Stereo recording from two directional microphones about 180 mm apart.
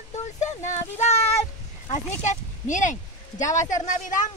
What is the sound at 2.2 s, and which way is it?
A woman's voice, 45° left (ahead or behind).